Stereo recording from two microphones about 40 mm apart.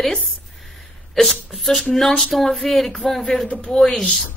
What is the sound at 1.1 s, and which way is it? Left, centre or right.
A woman's voice, centre.